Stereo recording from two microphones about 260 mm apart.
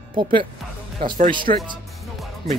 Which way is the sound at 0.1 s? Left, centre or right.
Centre.